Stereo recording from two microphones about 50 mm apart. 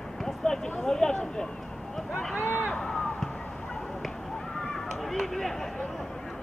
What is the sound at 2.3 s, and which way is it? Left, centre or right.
Speech, left.